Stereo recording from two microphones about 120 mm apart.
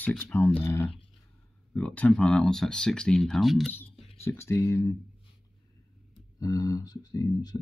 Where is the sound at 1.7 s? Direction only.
10° left (ahead or behind).